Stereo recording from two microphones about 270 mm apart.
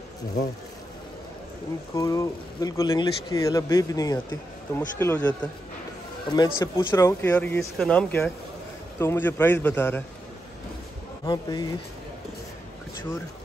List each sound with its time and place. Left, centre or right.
2.0 s speech: centre
6.3 s speech: centre
11.2 s speech: centre